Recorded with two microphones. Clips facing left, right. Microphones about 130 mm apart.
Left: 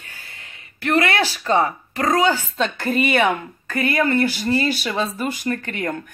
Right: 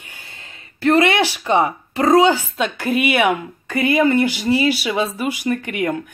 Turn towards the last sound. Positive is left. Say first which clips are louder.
# right 4 dB
turn(degrees=-10)  # may be behind; listen again after turning